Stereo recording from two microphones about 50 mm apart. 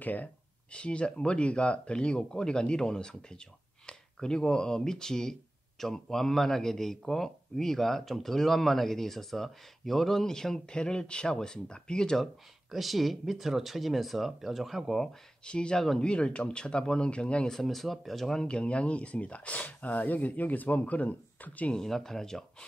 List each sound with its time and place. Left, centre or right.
0.0 s speech: left
0.7 s speech: left
12.7 s speech: centre
15.4 s speech: centre
17.5 s speech: centre
18.4 s speech: left
21.7 s speech: centre